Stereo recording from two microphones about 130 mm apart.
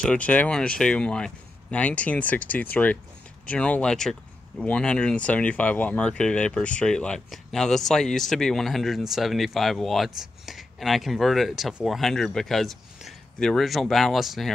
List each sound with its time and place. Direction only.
0.0 s speech: 10° left (ahead or behind)